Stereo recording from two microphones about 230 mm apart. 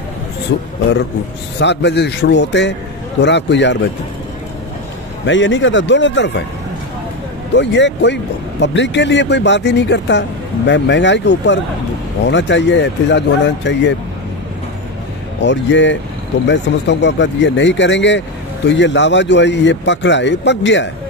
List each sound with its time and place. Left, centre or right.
0.5 s speech: left
5.2 s speech: left
7.5 s speech: left
15.4 s speech: left